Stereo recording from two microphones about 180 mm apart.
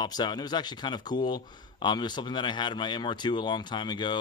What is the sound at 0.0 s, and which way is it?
Speech, 25° left (ahead or behind).